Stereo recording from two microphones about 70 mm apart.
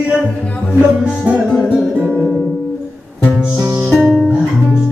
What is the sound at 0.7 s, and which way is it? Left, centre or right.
Music, centre.